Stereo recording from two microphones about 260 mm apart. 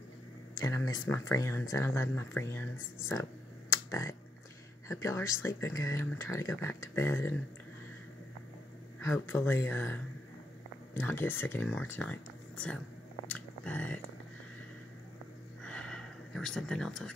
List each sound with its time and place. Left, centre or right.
0.6 s speech: centre
3.9 s speech: centre
9.0 s speech: centre
11.0 s speech: centre
13.3 s biting: centre
15.6 s a sound: centre